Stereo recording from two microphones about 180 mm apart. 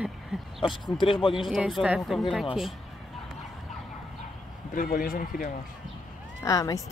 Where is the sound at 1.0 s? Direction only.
30° left (ahead or behind).